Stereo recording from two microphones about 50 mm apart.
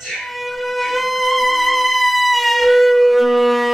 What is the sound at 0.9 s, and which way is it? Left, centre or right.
Music, centre.